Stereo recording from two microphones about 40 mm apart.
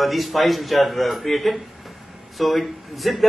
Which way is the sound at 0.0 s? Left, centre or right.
Centre.